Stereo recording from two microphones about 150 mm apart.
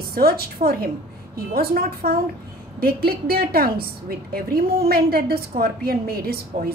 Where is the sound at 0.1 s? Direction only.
85° right.